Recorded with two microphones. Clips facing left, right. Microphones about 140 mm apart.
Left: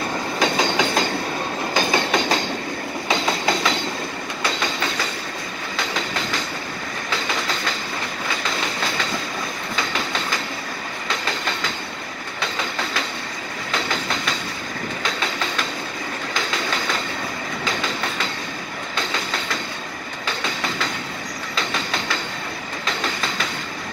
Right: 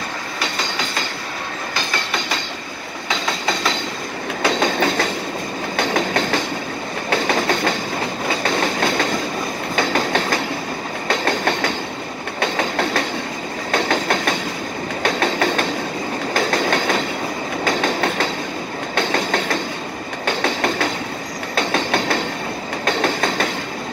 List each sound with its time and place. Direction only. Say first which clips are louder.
5.8 s train: right 7 dB; 55° right (ahead or behind)
11.1 s train: right 8 dB; 60° right (ahead or behind)